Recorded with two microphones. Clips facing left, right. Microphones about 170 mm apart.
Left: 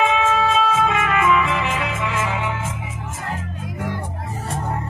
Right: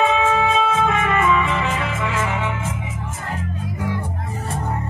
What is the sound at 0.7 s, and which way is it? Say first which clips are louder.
Music: right 1 dB; centre (ahead or behind).